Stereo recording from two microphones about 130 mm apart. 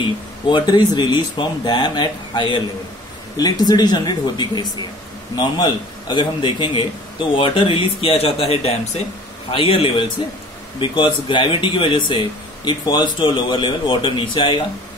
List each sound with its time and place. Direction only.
0.5 s a man's voice: 35° left (ahead or behind)
11.2 s speech: 40° left (ahead or behind)